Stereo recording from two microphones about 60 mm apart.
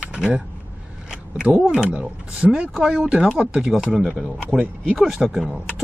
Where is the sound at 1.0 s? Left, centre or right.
Centre.